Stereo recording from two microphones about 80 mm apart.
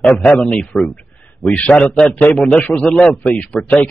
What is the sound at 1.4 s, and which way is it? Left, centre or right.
A man's voice, centre.